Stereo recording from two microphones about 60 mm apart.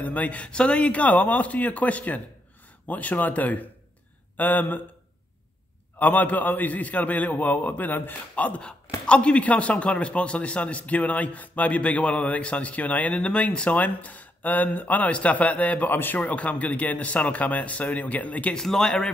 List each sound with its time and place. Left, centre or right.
0.0 s a man's voice: left
5.9 s a man's voice: left
18.6 s speech: centre